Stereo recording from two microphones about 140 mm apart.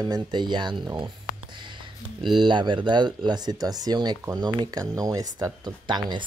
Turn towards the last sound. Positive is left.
turn(degrees=-35)  # may be behind; listen again after turning